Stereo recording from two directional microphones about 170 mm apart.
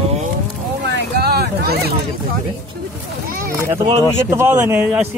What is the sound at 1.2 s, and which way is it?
Vehicle, 65° right (ahead or behind).